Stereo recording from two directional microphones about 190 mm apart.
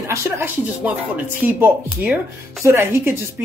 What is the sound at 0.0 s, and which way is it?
Speech, 15° right (ahead or behind).